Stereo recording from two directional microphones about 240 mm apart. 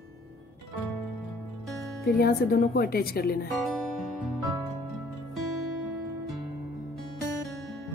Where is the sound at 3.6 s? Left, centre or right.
Centre.